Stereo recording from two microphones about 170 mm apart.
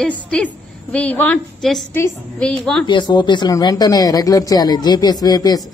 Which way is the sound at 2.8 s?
25° left (ahead or behind).